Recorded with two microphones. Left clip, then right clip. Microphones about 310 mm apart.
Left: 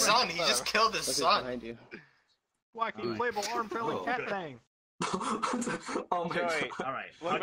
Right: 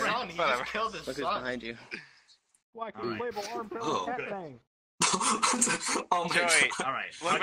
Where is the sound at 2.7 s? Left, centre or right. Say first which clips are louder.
Left 5 dB; left.